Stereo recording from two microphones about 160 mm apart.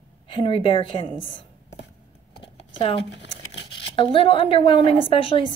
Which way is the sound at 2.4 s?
35° left (ahead or behind).